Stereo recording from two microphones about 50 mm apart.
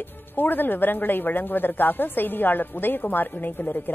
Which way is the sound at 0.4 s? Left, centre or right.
Left.